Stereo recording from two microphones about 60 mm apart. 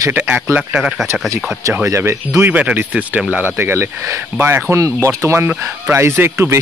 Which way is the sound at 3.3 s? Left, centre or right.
Right.